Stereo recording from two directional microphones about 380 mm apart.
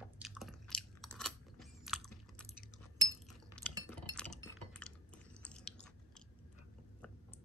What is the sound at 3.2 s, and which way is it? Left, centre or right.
Cutlery, centre.